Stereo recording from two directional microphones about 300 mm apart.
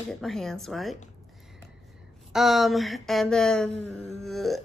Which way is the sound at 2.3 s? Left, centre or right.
Centre.